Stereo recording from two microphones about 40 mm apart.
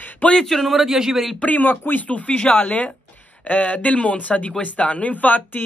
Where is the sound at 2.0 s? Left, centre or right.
Left.